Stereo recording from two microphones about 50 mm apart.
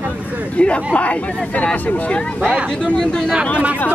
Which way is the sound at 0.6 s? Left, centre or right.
Left.